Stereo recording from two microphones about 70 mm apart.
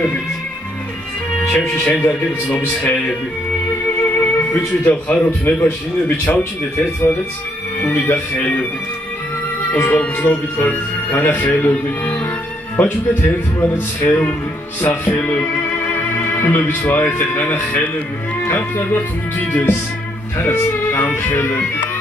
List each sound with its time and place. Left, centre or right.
1.9 s speech: left
4.0 s music: left
4.6 s speech: left
9.7 s speech: left
14.8 s music: left
17.2 s speech: left